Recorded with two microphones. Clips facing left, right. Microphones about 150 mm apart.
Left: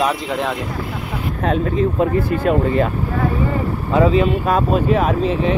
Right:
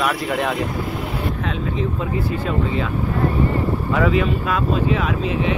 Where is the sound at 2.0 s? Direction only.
55° left (ahead or behind).